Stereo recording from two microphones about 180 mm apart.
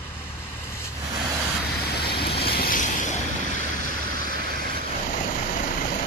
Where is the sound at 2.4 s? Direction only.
55° left (ahead or behind).